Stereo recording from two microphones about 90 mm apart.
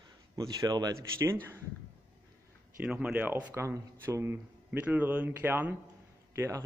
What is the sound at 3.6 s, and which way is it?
Speech, 30° right (ahead or behind).